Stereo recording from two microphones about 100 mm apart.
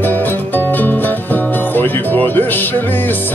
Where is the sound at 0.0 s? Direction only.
20° left (ahead or behind).